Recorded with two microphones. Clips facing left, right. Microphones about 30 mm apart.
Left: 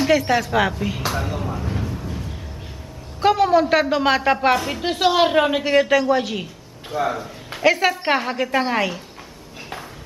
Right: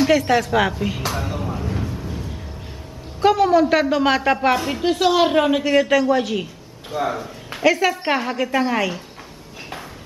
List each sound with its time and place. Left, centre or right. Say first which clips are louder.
0.0 s a sound: right 1 dB; centre
3.2 s a woman's voice: right 1 dB; centre
4.6 s a woman's voice: right 1 dB; centre
4.8 s a woman's voice: right 1 dB; centre
7.6 s a woman's voice: even; centre